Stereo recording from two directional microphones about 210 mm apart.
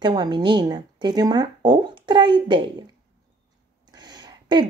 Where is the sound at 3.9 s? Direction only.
20° right (ahead or behind).